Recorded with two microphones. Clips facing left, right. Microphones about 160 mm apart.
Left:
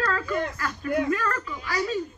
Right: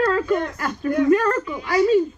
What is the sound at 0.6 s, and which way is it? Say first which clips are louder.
A man's voice: right 6 dB; 25° right (ahead or behind).